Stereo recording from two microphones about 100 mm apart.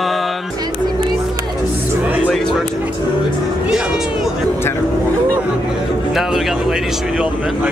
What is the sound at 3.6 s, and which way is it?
Speech, 10° right (ahead or behind).